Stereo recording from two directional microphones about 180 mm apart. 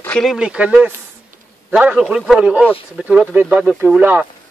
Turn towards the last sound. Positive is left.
turn(degrees=-10)  # may be behind; listen again after turning